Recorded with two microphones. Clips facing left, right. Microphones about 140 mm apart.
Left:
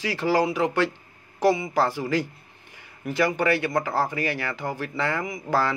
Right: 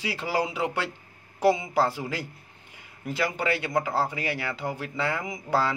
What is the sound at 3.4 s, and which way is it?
A man's voice, 15° right (ahead or behind).